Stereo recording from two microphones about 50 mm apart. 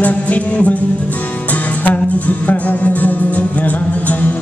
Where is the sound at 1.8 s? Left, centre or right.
Left.